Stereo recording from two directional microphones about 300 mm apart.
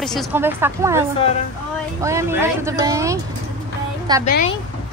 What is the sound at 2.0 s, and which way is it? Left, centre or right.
Speech, centre.